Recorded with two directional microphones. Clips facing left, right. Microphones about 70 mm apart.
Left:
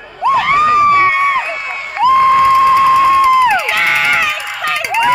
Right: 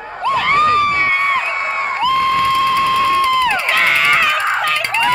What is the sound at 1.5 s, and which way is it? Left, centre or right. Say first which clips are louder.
Crowd: right 4 dB; right.